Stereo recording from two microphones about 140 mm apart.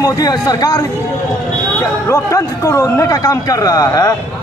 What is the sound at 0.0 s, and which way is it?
A man's voice, 30° left (ahead or behind).